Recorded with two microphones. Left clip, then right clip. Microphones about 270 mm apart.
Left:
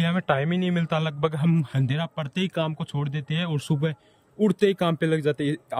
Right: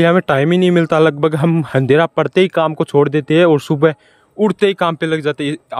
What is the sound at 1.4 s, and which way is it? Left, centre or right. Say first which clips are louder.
A man's voice: right 14 dB; centre.